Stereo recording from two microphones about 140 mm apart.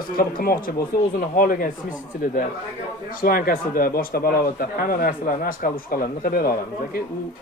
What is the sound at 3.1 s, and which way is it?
A man's voice, 90° left.